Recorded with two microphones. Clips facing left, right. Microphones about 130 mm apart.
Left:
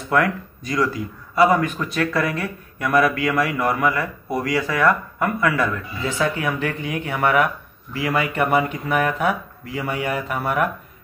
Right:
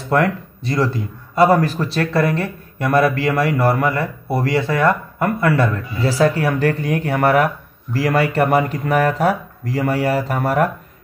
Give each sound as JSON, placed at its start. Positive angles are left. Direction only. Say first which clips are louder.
{"t": 0.1, "sound": "speech", "louder": "right 3 dB", "side_deg": -30}